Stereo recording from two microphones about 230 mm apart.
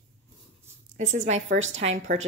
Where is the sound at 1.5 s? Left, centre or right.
Right.